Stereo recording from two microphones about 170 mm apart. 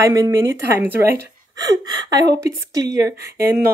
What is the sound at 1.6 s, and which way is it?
Speech, 25° right (ahead or behind).